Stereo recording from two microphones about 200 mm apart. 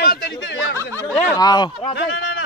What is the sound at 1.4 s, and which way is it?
Speech, 20° left (ahead or behind).